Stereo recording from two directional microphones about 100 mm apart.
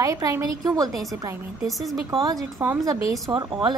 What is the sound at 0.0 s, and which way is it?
A woman's voice, 35° right (ahead or behind).